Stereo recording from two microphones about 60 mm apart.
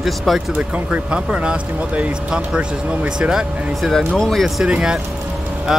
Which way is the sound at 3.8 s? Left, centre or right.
Centre.